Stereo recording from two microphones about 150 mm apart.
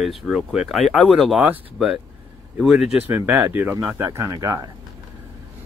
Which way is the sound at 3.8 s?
25° right (ahead or behind).